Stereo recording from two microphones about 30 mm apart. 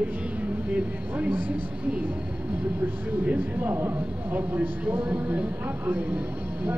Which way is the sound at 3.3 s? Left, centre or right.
Right.